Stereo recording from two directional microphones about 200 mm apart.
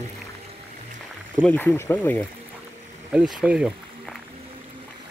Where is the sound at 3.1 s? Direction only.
5° right (ahead or behind).